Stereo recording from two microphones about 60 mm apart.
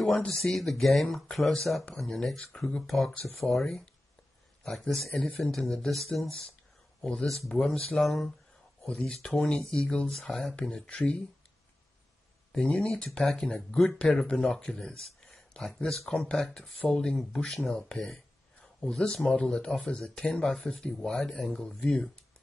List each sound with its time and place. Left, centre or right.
0.4 s speech: centre
7.0 s speech: centre
7.2 s speech: centre
8.8 s speech: centre
12.5 s speech: centre
16.8 s speech: centre